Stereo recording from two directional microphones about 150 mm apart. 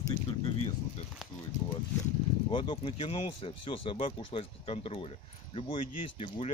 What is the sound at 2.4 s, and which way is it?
Speech, 30° left (ahead or behind).